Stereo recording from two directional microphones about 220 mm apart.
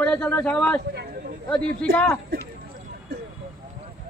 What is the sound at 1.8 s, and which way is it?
Speech, 5° left (ahead or behind).